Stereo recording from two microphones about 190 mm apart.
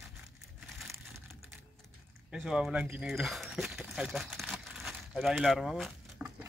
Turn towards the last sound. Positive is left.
turn(degrees=-5)  # may be behind; listen again after turning